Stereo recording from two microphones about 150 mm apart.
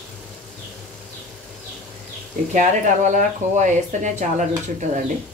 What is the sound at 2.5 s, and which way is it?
Speech, 60° right (ahead or behind).